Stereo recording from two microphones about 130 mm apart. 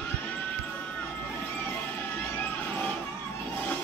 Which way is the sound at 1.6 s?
15° left (ahead or behind).